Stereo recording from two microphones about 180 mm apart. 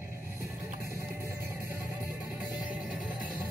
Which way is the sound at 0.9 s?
15° right (ahead or behind).